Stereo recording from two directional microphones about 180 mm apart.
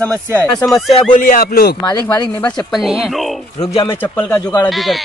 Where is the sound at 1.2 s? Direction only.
50° left (ahead or behind).